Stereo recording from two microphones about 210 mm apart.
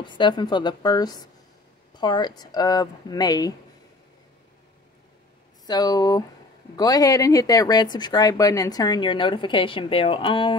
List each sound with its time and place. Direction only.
0.0 s speech: 20° left (ahead or behind)
5.7 s speech: 20° left (ahead or behind)